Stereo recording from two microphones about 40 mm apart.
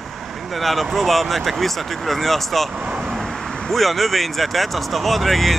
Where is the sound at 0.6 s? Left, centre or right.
Centre.